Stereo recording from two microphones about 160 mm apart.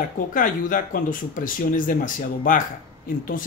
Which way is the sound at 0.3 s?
55° left (ahead or behind).